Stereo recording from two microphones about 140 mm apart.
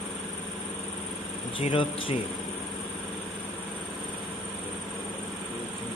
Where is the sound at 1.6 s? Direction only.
40° left (ahead or behind).